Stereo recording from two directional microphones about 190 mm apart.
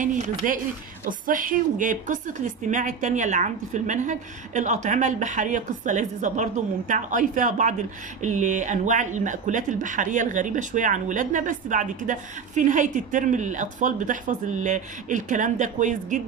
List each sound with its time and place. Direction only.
0.0 s speech: 40° right (ahead or behind)